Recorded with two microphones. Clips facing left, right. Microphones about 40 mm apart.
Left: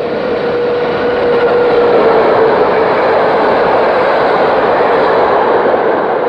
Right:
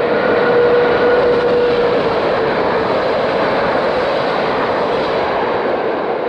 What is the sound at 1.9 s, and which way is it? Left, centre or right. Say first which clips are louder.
Vehicle: left 7 dB; left.